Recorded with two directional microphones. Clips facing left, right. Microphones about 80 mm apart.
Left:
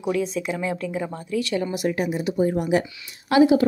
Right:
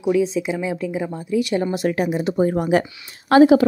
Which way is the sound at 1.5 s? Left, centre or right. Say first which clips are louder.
Right 4 dB; right.